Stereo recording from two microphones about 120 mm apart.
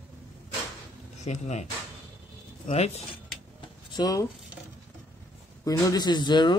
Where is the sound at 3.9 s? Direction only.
30° left (ahead or behind).